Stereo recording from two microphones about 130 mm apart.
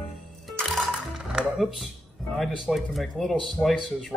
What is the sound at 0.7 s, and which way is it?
Music, centre (ahead or behind).